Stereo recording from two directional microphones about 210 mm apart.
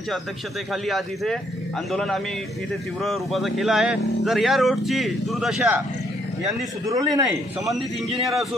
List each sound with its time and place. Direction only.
0.8 s speech: centre (ahead or behind)
6.9 s speech: 15° right (ahead or behind)